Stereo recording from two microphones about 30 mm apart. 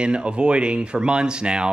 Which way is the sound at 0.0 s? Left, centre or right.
Right.